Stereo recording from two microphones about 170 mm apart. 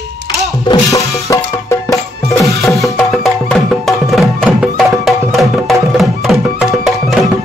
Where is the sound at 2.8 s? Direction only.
Centre (ahead or behind).